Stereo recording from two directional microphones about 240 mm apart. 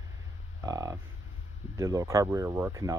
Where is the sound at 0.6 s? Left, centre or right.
Centre.